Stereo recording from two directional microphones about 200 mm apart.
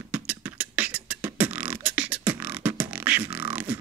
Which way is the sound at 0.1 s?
5° right (ahead or behind).